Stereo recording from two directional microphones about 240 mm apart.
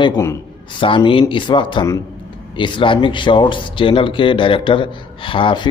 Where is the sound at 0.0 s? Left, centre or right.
Centre.